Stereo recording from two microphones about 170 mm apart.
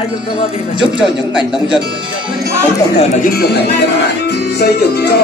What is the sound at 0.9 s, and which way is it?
Speech, 5° right (ahead or behind).